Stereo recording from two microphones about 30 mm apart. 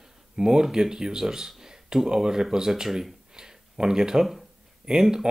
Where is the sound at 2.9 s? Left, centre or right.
Centre.